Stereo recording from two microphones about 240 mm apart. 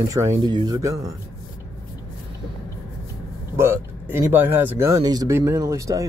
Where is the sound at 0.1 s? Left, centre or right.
Centre.